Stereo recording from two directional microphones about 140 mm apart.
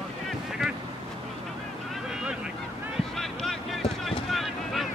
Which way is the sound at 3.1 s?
Centre (ahead or behind).